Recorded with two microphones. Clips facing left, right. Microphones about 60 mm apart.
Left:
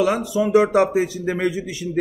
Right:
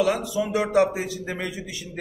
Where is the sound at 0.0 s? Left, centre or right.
Left.